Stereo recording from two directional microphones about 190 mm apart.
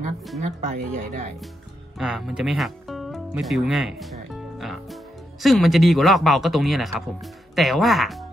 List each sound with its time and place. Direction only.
0.4 s speech: 40° right (ahead or behind)
2.0 s speech: centre (ahead or behind)